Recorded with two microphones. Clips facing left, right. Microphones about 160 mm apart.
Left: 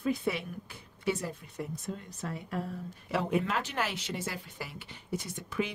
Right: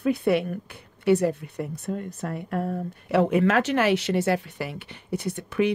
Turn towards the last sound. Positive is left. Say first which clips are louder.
# right 10 dB
turn(degrees=-65)  # may be behind; listen again after turning